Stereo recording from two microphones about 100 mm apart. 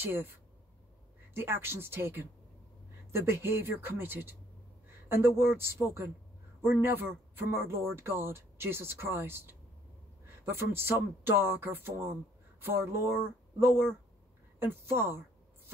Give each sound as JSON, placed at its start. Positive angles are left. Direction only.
{"t": 0.0, "sound": "speech", "side_deg": -20}
{"t": 1.3, "sound": "speech", "side_deg": -25}